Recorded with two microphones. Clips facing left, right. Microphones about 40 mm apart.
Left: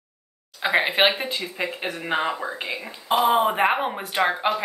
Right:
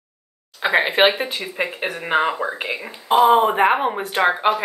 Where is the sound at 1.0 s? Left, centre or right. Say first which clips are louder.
Right 4 dB; centre.